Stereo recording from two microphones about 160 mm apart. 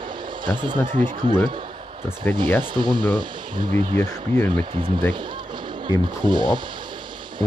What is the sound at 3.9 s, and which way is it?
Speech, 10° left (ahead or behind).